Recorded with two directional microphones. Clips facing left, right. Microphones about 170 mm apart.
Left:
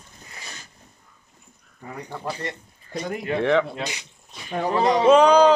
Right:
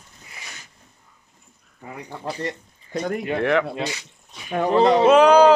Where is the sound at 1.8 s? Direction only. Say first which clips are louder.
Even; 20° right (ahead or behind).